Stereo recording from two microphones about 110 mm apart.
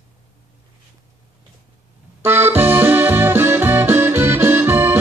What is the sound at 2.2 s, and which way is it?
Music, 20° right (ahead or behind).